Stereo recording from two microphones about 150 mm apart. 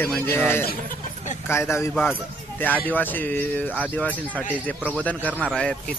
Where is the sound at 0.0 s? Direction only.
15° left (ahead or behind).